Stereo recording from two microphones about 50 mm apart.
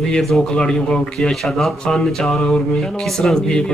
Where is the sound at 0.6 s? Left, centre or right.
Centre.